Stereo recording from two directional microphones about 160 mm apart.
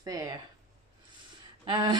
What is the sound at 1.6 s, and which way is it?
Speech, 30° right (ahead or behind).